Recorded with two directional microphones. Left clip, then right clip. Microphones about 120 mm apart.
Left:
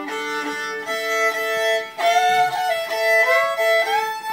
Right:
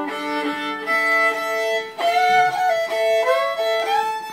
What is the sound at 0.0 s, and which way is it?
Music, centre (ahead or behind).